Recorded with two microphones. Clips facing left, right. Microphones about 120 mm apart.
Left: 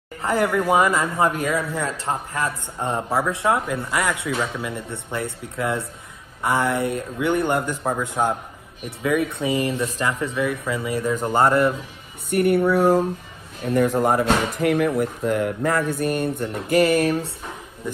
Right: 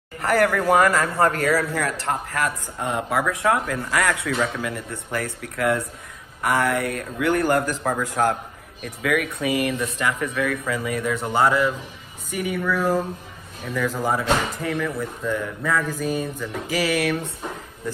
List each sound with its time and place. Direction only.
0.2 s speech: 20° left (ahead or behind)
2.8 s speech: 35° left (ahead or behind); by 12.5 s 60° left (ahead or behind)
13.7 s speech: 65° left (ahead or behind)
15.9 s a sound: 65° left (ahead or behind); by 17.3 s 40° left (ahead or behind)